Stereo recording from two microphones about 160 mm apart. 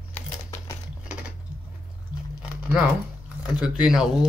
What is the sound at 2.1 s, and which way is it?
Biting, 25° left (ahead or behind).